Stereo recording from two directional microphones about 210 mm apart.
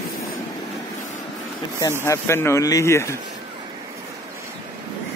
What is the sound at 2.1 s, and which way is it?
Speech, 10° left (ahead or behind).